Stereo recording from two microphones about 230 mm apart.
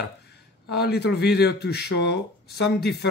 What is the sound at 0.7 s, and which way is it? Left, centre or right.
Speech, left.